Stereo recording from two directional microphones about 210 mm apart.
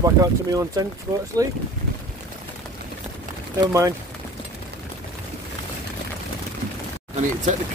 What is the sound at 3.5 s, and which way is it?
Speech, 15° right (ahead or behind).